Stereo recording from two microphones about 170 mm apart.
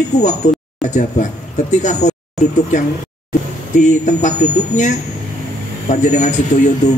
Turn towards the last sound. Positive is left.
turn(degrees=45)  # may be behind; listen again after turning